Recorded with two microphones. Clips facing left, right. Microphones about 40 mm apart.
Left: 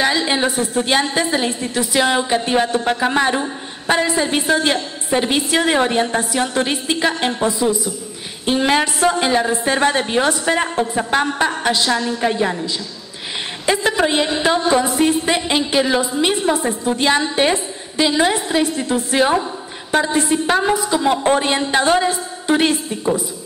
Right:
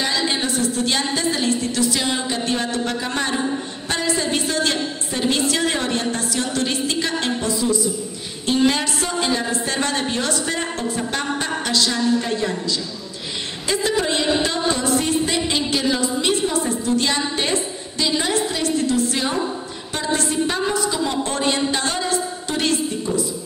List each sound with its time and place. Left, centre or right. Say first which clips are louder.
0.0 s a woman's voice: left 5 dB; left
20.4 s a woman's voice: left 5 dB; left